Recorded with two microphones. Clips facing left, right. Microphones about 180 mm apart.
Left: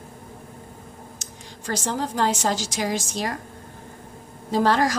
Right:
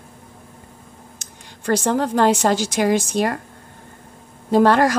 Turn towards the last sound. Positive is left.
turn(degrees=-60)  # may be behind; listen again after turning